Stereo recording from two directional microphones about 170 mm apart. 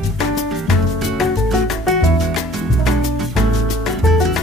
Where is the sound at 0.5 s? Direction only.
Centre (ahead or behind).